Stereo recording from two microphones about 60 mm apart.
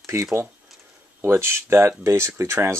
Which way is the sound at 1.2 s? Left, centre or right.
Right.